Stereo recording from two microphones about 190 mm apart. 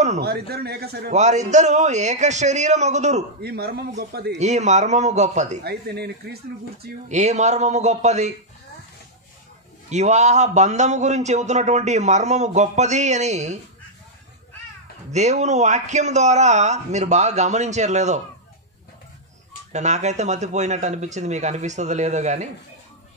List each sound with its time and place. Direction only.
0.2 s speech: 55° right (ahead or behind)
1.1 s a man's voice: 40° right (ahead or behind)
3.4 s speech: 55° right (ahead or behind)
4.4 s a man's voice: 35° right (ahead or behind)
5.6 s speech: 60° right (ahead or behind)
7.1 s a man's voice: 40° right (ahead or behind)
9.8 s a man's voice: 35° right (ahead or behind)
15.0 s a man's voice: 35° right (ahead or behind)
19.7 s a man's voice: 35° right (ahead or behind)